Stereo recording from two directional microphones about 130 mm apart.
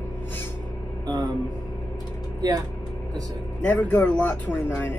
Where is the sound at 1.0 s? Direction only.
35° right (ahead or behind).